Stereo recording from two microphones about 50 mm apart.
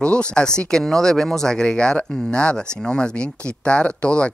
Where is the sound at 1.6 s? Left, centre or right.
Left.